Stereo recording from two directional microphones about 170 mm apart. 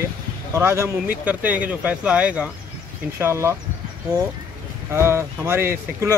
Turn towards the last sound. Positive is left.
turn(degrees=-15)  # may be behind; listen again after turning